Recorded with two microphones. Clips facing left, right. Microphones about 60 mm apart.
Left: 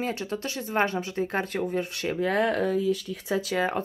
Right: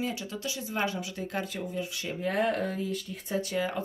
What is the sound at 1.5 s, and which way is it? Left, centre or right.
Speech, left.